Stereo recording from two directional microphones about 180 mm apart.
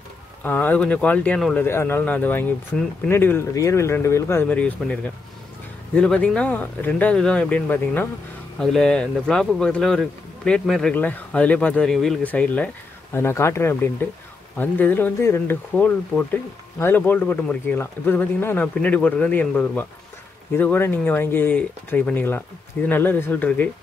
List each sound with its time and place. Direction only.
0.4 s a man's voice: 10° left (ahead or behind)
5.9 s a man's voice: 5° left (ahead or behind)